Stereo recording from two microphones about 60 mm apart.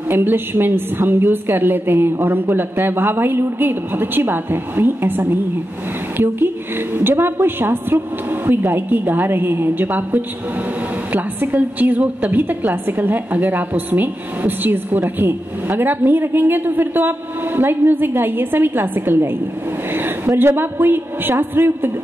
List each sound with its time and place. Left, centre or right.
0.1 s a woman's voice: right